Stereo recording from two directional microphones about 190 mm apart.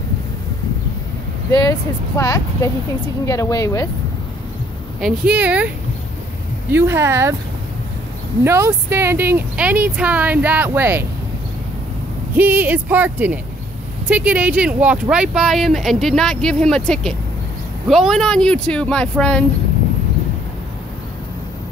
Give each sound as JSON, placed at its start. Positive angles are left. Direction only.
{"t": 1.5, "sound": "speech", "side_deg": 20}
{"t": 5.0, "sound": "speech", "side_deg": -5}
{"t": 6.7, "sound": "speech", "side_deg": -10}
{"t": 8.5, "sound": "speech", "side_deg": -10}
{"t": 12.4, "sound": "speech", "side_deg": -10}